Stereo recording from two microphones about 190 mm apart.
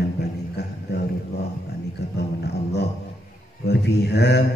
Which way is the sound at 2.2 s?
60° left (ahead or behind).